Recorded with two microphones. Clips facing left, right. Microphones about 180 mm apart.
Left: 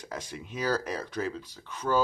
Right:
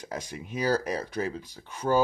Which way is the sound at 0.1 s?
15° right (ahead or behind).